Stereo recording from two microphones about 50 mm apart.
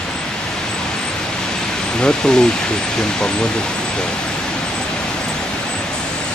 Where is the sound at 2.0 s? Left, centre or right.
Centre.